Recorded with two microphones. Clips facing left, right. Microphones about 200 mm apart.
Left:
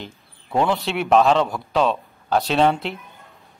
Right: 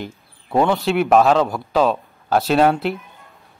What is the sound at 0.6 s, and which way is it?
Speech, centre (ahead or behind).